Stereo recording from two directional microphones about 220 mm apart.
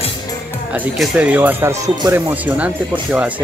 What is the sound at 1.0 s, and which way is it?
Speech, 5° right (ahead or behind).